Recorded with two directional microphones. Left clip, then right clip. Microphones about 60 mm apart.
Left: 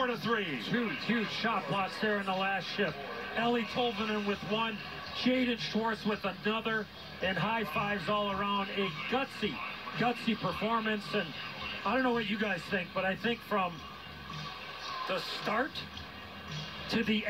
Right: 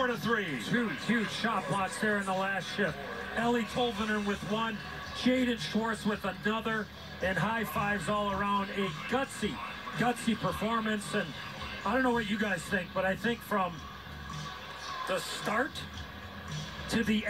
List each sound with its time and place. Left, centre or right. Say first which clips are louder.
0.0 s a man's voice: right 1 dB; left; by 8.8 s centre
8.8 s a man's voice: right 1 dB; centre
12.2 s speech: right 1 dB; left
15.0 s speech: right 1 dB; centre
16.9 s speech: right 1 dB; centre